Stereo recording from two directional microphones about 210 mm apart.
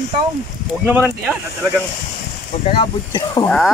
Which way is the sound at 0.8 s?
5° right (ahead or behind).